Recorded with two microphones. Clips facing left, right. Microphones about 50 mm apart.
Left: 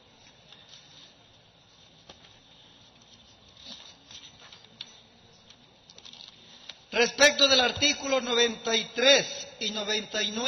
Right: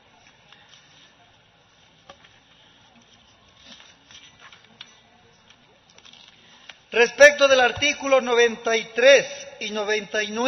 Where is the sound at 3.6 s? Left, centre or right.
Right.